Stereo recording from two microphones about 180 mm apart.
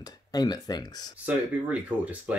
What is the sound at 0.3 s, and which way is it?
Speech, 20° left (ahead or behind).